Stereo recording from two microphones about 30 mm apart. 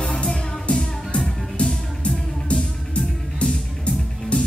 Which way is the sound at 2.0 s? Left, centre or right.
Left.